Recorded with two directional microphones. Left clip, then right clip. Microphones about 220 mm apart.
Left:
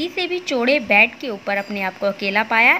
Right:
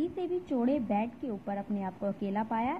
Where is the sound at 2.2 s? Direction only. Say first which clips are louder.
Left 15 dB; 15° left (ahead or behind).